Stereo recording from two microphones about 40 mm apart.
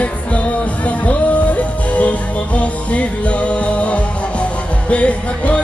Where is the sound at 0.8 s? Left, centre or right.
Left.